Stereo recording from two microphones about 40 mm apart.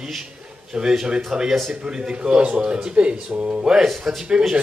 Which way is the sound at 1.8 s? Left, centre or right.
Right.